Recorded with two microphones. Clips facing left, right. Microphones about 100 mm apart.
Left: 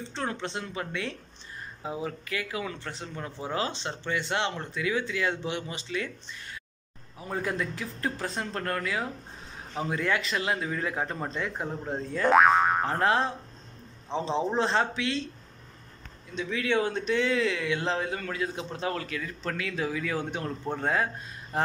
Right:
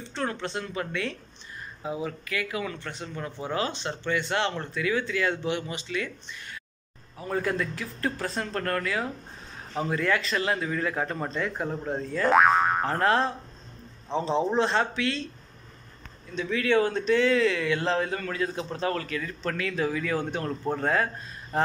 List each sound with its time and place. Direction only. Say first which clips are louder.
0.1 s speech: right 3 dB; 20° left (ahead or behind)
7.2 s a man's voice: right 3 dB; 15° left (ahead or behind)
12.2 s boing: even; centre (ahead or behind)
12.8 s a man's voice: right 1 dB; 15° left (ahead or behind)
14.6 s speech: right 1 dB; 25° left (ahead or behind)
16.3 s a man's voice: right 4 dB; 15° left (ahead or behind)